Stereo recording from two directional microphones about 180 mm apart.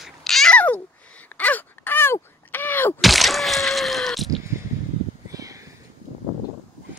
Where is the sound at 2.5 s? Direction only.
10° left (ahead or behind).